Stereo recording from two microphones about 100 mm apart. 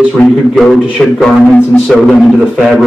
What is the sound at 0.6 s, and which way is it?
Speech, 5° left (ahead or behind).